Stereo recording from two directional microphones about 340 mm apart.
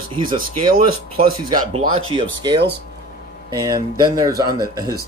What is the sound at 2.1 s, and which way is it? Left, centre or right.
Speech, centre.